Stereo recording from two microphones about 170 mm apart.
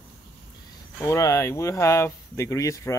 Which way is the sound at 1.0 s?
15° left (ahead or behind).